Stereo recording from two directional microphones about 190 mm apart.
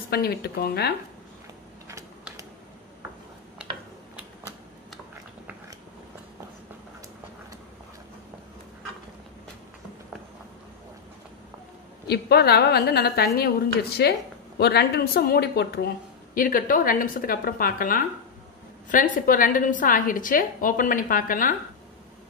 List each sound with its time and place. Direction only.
0.1 s a woman's voice: 55° left (ahead or behind)
1.9 s a sound: 15° right (ahead or behind)
12.1 s a woman's voice: 55° left (ahead or behind)
16.3 s a woman's voice: 45° left (ahead or behind)